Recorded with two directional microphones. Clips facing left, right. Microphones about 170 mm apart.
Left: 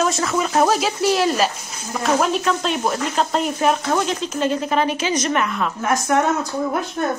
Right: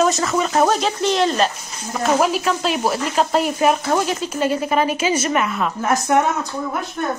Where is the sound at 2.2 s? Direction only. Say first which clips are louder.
Right 1 dB; 5° right (ahead or behind).